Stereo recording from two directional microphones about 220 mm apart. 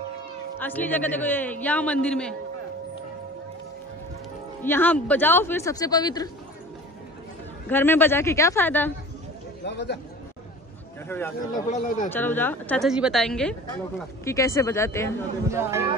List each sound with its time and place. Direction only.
0.6 s a woman's voice: 10° left (ahead or behind)
4.6 s a woman's voice: 10° left (ahead or behind)
7.7 s a woman's voice: 10° left (ahead or behind)
9.7 s speech: 50° left (ahead or behind)
11.1 s a woman's voice: 10° left (ahead or behind)
11.5 s speech: 35° left (ahead or behind)
12.1 s a woman's voice: 10° left (ahead or behind)
15.4 s speech: 10° right (ahead or behind)